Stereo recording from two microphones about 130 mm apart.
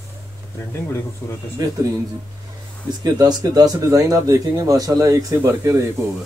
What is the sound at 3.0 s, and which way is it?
Speech, 30° right (ahead or behind).